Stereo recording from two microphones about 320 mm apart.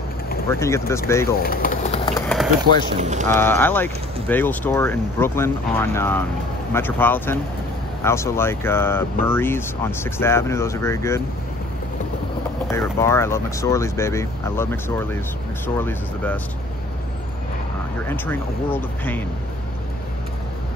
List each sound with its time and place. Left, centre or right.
0.5 s speech: centre
1.4 s a sound: left; by 2.5 s centre
2.6 s speech: right
3.3 s speech: centre
12.6 s speech: centre
18.0 s speech: centre